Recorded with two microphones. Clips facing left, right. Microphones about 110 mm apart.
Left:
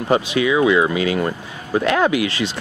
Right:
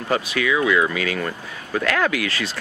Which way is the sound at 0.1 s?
20° left (ahead or behind).